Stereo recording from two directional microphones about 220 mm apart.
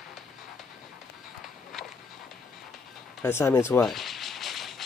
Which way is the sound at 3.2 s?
10° left (ahead or behind).